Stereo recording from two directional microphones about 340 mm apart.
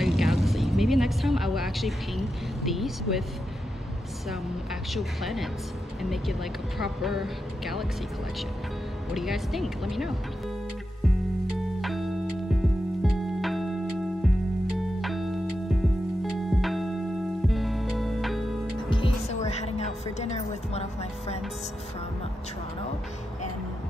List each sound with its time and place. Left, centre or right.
0.0 s speech: centre
4.9 s speech: centre
6.8 s speech: centre
9.1 s speech: centre
11.5 s music: centre
14.8 s music: centre
18.9 s music: centre